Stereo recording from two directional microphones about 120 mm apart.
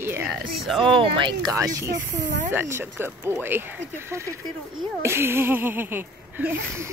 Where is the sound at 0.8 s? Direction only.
45° right (ahead or behind); by 3.6 s 20° right (ahead or behind).